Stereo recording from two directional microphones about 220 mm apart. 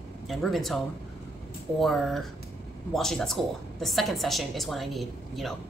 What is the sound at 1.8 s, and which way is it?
A woman's voice, centre (ahead or behind).